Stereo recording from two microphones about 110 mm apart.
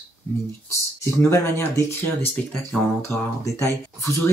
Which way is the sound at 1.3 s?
25° left (ahead or behind).